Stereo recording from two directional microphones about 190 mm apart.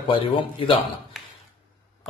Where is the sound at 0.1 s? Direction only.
25° left (ahead or behind).